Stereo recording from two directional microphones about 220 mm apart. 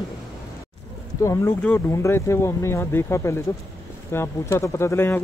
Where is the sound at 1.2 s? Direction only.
15° left (ahead or behind).